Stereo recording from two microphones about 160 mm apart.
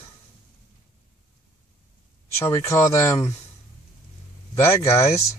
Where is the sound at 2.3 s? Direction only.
15° left (ahead or behind).